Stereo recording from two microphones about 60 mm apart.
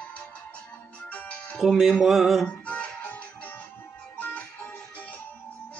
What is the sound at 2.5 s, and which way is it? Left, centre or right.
Music, left.